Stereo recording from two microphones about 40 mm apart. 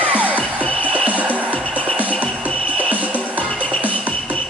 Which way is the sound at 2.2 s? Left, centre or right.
Left.